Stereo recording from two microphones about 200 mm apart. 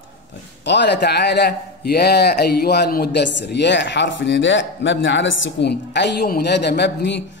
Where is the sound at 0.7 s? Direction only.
60° left (ahead or behind).